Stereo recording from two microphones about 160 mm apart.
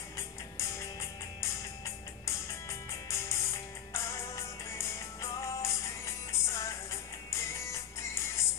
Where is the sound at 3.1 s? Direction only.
15° left (ahead or behind).